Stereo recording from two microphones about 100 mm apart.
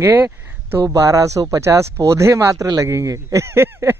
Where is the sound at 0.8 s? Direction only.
35° right (ahead or behind).